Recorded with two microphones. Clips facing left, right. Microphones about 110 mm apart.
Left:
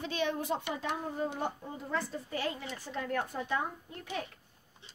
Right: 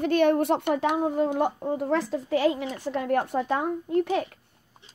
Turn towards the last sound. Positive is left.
turn(degrees=-70)  # may be behind; listen again after turning